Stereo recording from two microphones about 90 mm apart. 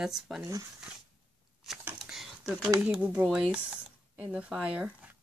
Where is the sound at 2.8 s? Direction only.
15° right (ahead or behind).